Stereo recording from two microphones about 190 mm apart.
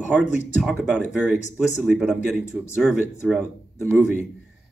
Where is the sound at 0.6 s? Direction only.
5° right (ahead or behind).